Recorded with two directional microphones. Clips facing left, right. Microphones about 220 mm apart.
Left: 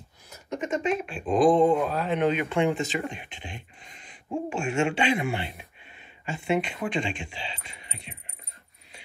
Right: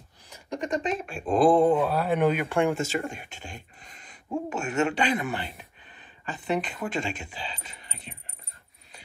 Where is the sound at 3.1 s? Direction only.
45° right (ahead or behind).